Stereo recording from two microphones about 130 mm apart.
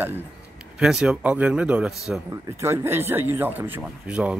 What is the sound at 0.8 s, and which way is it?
Speech, 5° right (ahead or behind).